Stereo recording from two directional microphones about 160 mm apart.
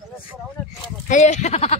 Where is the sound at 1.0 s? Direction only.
50° left (ahead or behind).